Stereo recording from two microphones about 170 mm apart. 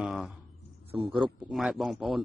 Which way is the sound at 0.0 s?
5° right (ahead or behind).